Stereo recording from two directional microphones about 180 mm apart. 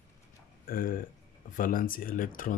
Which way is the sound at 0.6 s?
50° left (ahead or behind).